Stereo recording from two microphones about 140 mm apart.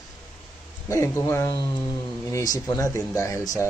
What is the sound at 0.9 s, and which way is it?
Speech, 20° left (ahead or behind).